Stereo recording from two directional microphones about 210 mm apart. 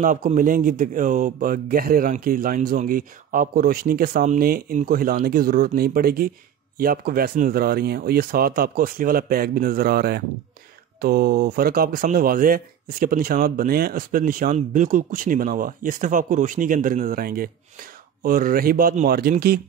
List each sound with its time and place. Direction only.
0.0 s speech: 40° right (ahead or behind)